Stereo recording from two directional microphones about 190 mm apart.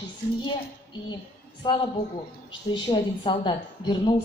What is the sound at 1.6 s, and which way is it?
A woman's voice, 25° left (ahead or behind).